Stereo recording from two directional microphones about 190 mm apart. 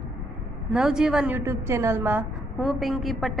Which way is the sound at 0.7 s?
5° right (ahead or behind).